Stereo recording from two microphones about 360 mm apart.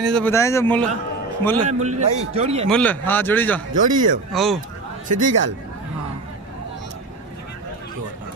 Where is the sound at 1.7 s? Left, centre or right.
Centre.